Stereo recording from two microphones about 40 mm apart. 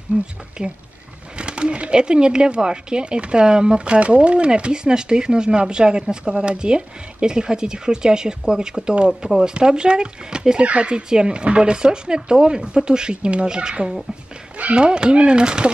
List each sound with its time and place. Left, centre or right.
0.1 s speech: right